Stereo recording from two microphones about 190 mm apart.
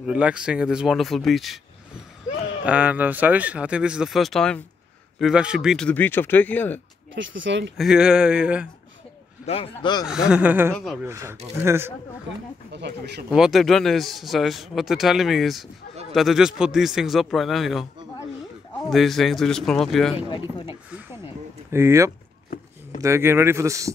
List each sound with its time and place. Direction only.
0.0 s a man's voice: 5° right (ahead or behind)
2.6 s speech: 5° right (ahead or behind); by 6.8 s 10° left (ahead or behind)
7.2 s speech: 75° right (ahead or behind)
7.7 s a man's voice: centre (ahead or behind)
9.5 s speech: 30° left (ahead or behind)
10.0 s speech: 5° right (ahead or behind)
10.7 s a man's voice: centre (ahead or behind)
11.1 s speech: 15° right (ahead or behind)
12.7 s speech: 60° right (ahead or behind)
13.3 s a man's voice: centre (ahead or behind)
18.9 s a man's voice: centre (ahead or behind)
21.7 s speech: 15° right (ahead or behind)